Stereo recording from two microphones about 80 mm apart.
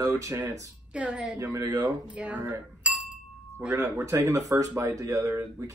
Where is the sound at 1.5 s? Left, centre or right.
Right.